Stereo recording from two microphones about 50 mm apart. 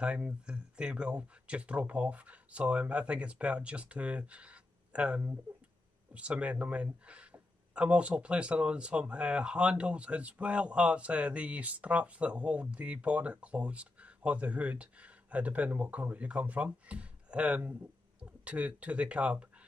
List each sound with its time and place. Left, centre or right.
0.0 s speech: right